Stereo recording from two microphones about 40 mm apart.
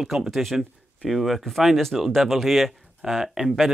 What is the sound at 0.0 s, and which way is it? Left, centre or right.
Speech, centre.